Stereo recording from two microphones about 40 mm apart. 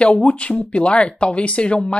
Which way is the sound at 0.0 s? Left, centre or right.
Left.